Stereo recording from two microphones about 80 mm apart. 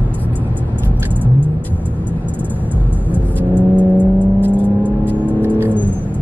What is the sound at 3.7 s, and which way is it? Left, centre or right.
Car, left.